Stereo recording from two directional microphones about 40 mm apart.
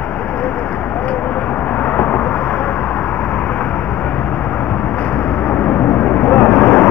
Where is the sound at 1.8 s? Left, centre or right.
Left.